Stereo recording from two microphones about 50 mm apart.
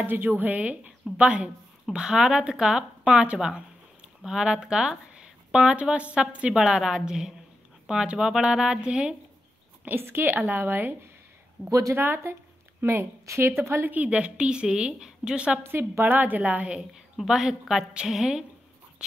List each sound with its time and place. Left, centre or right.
0.0 s speech: right; by 2.8 s centre
3.0 s speech: right
9.9 s a woman's voice: right
12.8 s a woman's voice: right
13.8 s a woman's voice: right
15.6 s a woman's voice: right
16.0 s speech: right
17.3 s speech: centre